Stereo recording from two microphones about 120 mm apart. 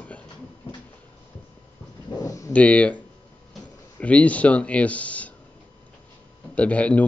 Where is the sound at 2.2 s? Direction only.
30° left (ahead or behind).